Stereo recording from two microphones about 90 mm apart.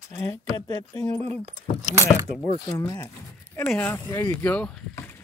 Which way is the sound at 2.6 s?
45° left (ahead or behind).